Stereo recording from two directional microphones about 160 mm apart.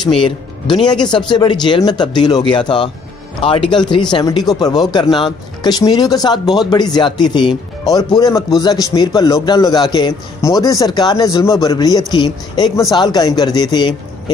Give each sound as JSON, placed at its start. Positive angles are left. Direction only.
{"t": 0.2, "sound": "a man's voice", "side_deg": 30}